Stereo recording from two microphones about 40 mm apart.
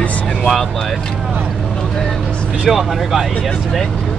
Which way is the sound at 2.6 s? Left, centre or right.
Centre.